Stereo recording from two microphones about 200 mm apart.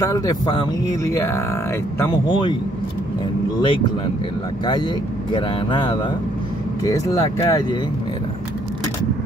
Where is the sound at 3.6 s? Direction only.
25° left (ahead or behind).